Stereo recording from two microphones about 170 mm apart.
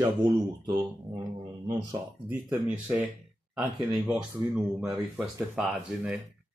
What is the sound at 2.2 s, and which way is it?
Speech, 10° right (ahead or behind).